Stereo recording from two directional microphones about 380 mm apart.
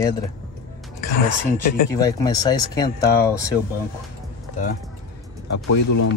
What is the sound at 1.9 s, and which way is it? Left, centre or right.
Speech, centre.